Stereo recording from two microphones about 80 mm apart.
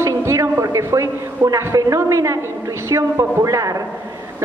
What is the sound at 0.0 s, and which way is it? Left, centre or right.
A man's voice, right.